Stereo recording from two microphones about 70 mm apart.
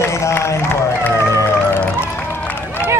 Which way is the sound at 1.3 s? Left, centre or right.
Left.